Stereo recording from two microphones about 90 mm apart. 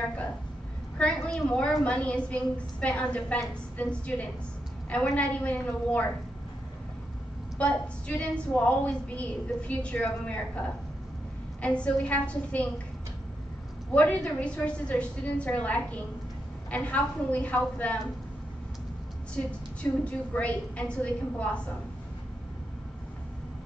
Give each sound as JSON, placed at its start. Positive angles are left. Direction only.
{"t": 0.9, "sound": "a woman's voice", "side_deg": 15}
{"t": 7.5, "sound": "a woman's voice", "side_deg": 15}
{"t": 11.6, "sound": "a woman's voice", "side_deg": 15}
{"t": 13.9, "sound": "a woman's voice", "side_deg": 15}
{"t": 19.3, "sound": "a woman's voice", "side_deg": 15}